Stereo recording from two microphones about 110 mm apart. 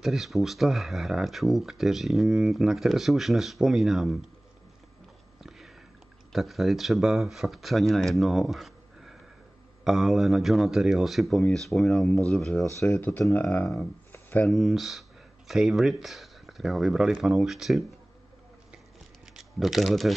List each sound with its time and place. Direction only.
0.0 s speech: centre (ahead or behind)
5.4 s a sound: centre (ahead or behind)
6.3 s speech: centre (ahead or behind)
12.6 s speech: 25° left (ahead or behind)
13.3 s speech: 15° left (ahead or behind)
14.1 s a sound: 15° left (ahead or behind)
14.5 s speech: centre (ahead or behind)
19.2 s typing: centre (ahead or behind)